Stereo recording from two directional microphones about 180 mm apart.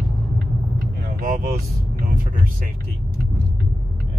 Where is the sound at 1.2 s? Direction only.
50° right (ahead or behind).